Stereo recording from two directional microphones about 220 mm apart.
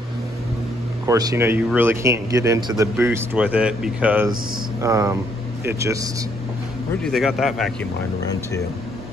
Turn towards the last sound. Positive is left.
turn(degrees=0)  # may be behind; listen again after turning